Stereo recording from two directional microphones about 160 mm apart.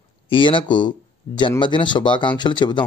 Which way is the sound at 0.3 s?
30° left (ahead or behind).